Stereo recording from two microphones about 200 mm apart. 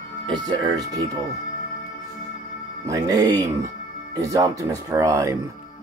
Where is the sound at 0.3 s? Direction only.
20° right (ahead or behind).